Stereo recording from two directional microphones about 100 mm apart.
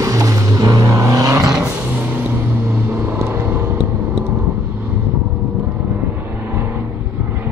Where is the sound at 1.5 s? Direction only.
15° right (ahead or behind).